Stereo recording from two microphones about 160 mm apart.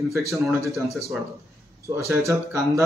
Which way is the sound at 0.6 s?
20° right (ahead or behind).